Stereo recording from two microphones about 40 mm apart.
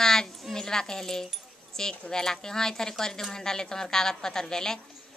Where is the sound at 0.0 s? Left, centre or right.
Centre.